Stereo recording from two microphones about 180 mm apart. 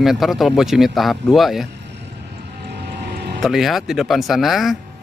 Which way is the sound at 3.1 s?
65° right (ahead or behind).